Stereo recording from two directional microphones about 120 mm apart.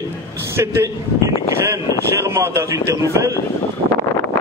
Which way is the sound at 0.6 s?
20° right (ahead or behind).